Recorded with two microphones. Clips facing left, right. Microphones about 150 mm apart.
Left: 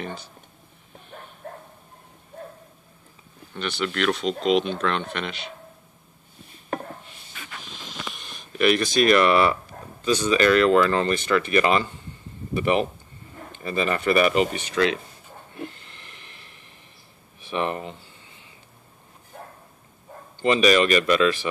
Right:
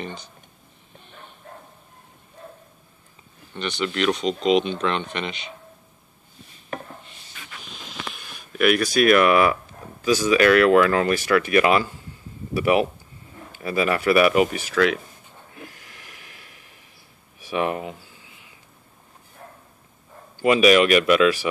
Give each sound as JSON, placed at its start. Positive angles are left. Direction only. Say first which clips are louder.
{"t": 0.0, "sound": "speech", "louder": "even", "side_deg": 5}
{"t": 1.4, "sound": "bow-wow", "louder": "left 5 dB", "side_deg": 50}
{"t": 3.5, "sound": "speech", "louder": "right 1 dB", "side_deg": 5}
{"t": 7.7, "sound": "a sound", "louder": "right 2 dB", "side_deg": 0}
{"t": 10.0, "sound": "speech", "louder": "right 2 dB", "side_deg": -10}
{"t": 15.5, "sound": "a sound", "louder": "left 7 dB", "side_deg": -5}
{"t": 20.3, "sound": "speech", "louder": "right 3 dB", "side_deg": -10}